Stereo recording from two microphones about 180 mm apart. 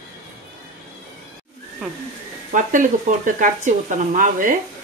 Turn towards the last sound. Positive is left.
turn(degrees=-45)  # may be behind; listen again after turning